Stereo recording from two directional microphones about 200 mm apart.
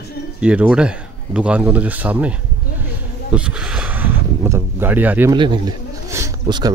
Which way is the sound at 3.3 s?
5° right (ahead or behind).